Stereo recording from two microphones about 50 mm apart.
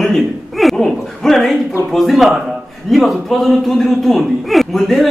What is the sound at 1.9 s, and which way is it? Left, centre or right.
A man's voice, centre.